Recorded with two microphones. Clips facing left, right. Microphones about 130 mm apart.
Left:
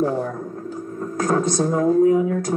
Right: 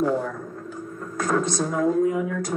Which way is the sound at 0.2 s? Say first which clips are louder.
Left 4 dB; 30° left (ahead or behind).